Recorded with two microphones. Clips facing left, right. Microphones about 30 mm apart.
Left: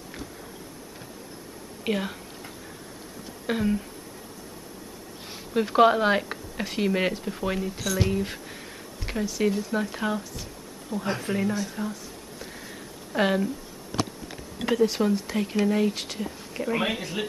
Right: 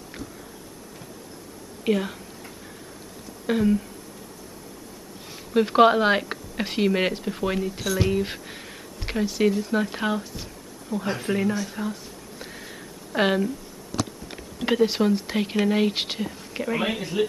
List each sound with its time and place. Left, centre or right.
1.9 s a sound: centre
3.4 s speech: centre
5.5 s speech: centre
9.2 s speech: right
10.9 s speech: centre
12.5 s a sound: centre
14.7 s speech: right
16.2 s a sound: right
16.7 s speech: centre